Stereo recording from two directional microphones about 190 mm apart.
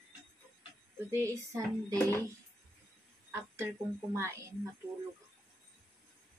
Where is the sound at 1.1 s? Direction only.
15° right (ahead or behind).